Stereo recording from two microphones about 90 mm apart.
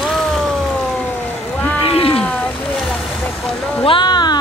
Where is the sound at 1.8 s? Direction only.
90° left.